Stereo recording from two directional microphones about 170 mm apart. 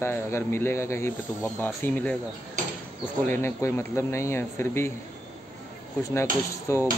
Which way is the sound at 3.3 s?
15° left (ahead or behind).